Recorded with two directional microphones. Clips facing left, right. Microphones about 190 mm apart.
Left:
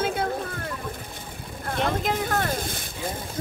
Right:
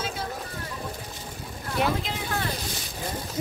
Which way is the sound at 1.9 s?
50° left (ahead or behind).